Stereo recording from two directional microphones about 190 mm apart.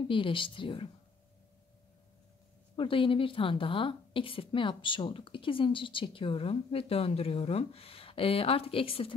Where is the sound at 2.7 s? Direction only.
25° left (ahead or behind).